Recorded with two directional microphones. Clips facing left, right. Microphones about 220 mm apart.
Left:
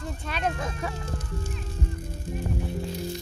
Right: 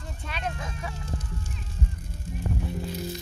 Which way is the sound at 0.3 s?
45° left (ahead or behind).